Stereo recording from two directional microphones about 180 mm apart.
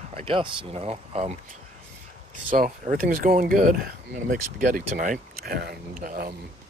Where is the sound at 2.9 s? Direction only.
50° right (ahead or behind).